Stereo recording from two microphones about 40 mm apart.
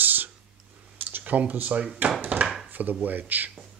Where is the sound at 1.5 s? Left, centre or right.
Right.